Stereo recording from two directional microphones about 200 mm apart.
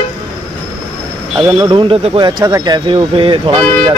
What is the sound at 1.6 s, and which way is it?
Speech, 25° right (ahead or behind).